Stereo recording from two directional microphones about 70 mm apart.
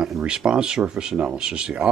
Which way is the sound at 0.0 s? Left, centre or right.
Centre.